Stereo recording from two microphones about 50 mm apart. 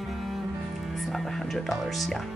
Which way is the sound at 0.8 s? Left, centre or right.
Centre.